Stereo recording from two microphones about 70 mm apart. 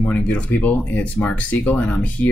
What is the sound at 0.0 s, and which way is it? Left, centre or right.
Speech, centre.